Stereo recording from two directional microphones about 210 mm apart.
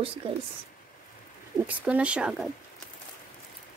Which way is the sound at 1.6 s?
5° right (ahead or behind).